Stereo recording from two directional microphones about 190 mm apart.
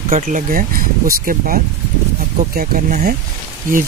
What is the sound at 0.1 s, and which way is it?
Speech, 45° right (ahead or behind).